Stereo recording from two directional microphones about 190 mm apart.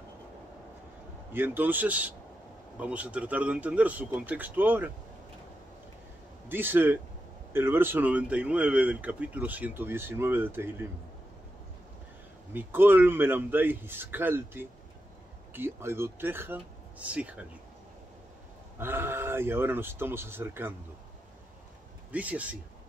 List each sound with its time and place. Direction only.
1.3 s speech: 10° right (ahead or behind)
6.5 s speech: 10° right (ahead or behind)
12.5 s speech: 10° right (ahead or behind)
18.8 s speech: 10° right (ahead or behind)
22.1 s speech: 10° right (ahead or behind)